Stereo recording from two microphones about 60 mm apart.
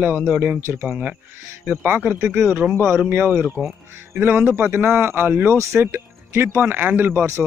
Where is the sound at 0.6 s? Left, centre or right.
Right.